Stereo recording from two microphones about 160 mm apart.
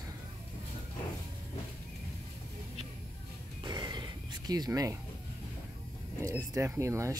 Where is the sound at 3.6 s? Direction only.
25° right (ahead or behind).